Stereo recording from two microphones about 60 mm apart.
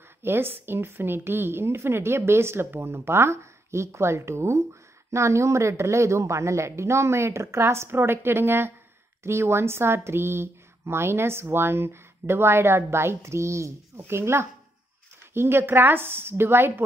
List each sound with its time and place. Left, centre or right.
0.2 s a woman's voice: right